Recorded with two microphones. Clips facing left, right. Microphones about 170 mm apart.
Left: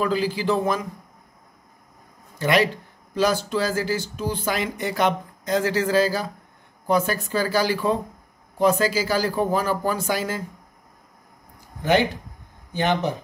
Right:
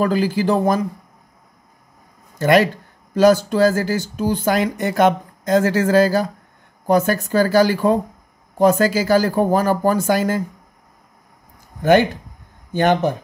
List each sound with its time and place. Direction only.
0.0 s speech: 45° right (ahead or behind)
2.3 s speech: 45° right (ahead or behind)
12.7 s speech: 50° right (ahead or behind)